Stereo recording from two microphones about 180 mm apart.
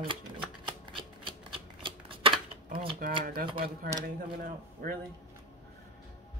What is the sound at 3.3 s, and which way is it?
Speech, 55° right (ahead or behind).